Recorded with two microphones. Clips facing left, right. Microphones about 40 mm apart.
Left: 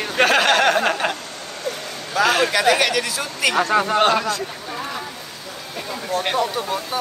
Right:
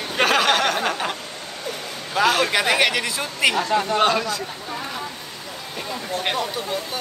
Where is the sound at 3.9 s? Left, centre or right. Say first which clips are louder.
Left 2 dB; centre.